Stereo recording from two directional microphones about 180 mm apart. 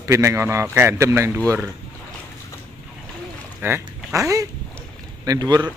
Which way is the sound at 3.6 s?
15° right (ahead or behind).